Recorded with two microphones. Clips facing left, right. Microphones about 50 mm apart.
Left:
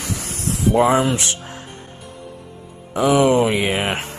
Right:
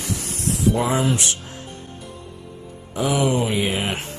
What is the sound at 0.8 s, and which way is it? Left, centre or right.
Speech, left.